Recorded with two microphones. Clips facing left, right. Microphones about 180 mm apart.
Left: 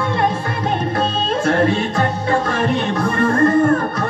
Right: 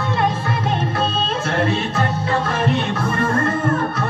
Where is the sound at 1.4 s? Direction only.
45° left (ahead or behind).